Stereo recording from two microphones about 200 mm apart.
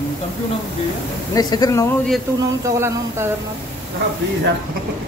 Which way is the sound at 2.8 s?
10° right (ahead or behind).